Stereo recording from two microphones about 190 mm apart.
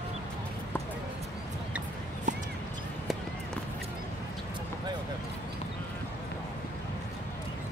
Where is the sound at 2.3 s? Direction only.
40° right (ahead or behind).